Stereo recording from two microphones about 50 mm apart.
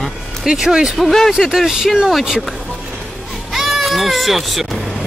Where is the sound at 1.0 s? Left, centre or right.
Centre.